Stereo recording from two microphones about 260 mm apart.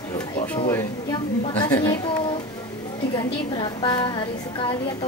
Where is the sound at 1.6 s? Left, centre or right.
Centre.